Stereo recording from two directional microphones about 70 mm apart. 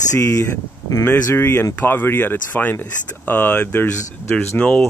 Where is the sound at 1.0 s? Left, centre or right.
Left.